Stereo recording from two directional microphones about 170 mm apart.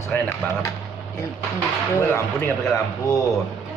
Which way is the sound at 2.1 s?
15° left (ahead or behind).